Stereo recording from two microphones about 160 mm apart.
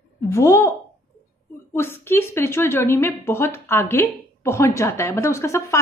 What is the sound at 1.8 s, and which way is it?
A woman's voice, 15° left (ahead or behind).